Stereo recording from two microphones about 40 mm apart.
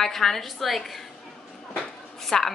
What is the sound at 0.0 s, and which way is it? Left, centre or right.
A woman's voice, centre.